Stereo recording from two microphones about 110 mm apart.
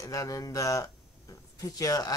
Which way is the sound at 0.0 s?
30° left (ahead or behind).